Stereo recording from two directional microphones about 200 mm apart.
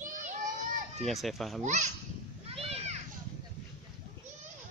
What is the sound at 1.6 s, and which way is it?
Speech, 35° right (ahead or behind).